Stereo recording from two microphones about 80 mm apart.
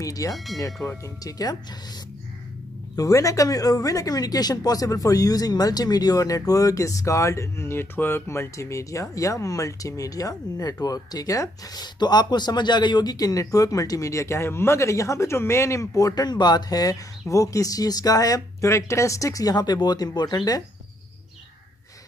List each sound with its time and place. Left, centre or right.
0.0 s speech: left
0.5 s speech: centre
0.8 s speech: left
3.0 s speech: left
16.3 s speech: left